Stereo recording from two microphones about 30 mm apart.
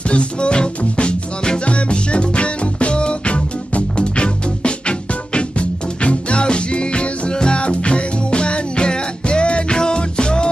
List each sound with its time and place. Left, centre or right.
0.1 s music: left